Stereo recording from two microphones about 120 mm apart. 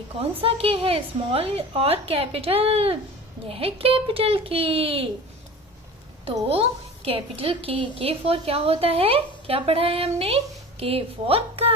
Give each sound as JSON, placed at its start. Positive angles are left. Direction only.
{"t": 0.2, "sound": "a woman's voice", "side_deg": -50}
{"t": 6.4, "sound": "a woman's voice", "side_deg": -50}